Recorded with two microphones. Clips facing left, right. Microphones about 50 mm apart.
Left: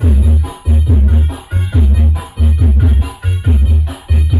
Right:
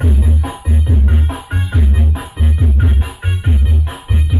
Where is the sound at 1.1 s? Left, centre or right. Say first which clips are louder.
Even; centre.